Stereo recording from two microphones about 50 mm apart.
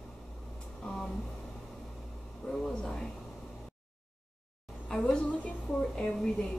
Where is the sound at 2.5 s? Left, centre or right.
Centre.